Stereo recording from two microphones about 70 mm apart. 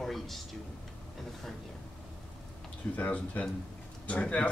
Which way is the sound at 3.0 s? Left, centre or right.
Left.